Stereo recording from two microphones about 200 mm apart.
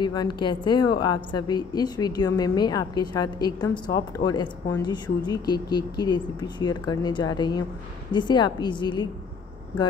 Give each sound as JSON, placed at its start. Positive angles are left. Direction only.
{"t": 0.0, "sound": "a woman's voice", "side_deg": 20}